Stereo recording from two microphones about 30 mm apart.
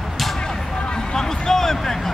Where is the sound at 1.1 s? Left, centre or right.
Centre.